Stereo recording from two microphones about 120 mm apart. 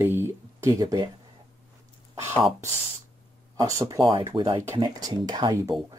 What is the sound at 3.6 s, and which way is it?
Speech, 25° right (ahead or behind).